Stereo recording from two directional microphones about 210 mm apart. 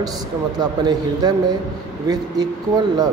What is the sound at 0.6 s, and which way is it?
Speech, 20° right (ahead or behind).